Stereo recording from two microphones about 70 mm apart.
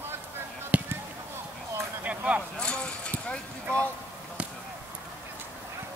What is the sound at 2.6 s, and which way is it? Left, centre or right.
Clip-clop, centre.